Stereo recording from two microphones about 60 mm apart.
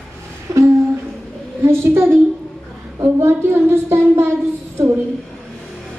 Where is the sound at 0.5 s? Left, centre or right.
Right.